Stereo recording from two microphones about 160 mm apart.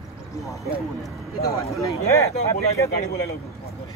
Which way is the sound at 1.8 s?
20° left (ahead or behind).